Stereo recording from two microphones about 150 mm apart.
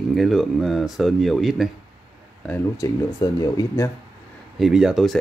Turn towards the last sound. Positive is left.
turn(degrees=-5)  # may be behind; listen again after turning